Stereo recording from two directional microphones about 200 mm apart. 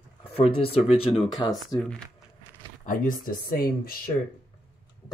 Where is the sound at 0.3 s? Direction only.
30° left (ahead or behind).